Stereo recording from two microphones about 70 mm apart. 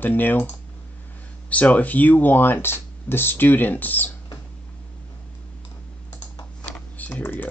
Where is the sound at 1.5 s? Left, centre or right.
Left.